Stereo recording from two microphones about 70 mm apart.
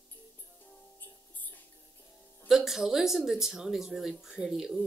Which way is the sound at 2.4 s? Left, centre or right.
Centre.